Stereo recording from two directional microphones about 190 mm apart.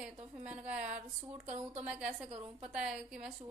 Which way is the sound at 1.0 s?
40° right (ahead or behind).